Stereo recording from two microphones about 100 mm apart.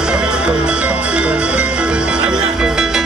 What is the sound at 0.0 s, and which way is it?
Music, 10° right (ahead or behind).